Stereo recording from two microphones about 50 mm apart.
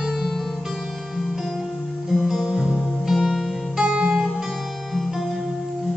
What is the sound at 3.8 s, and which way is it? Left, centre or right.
Music, centre.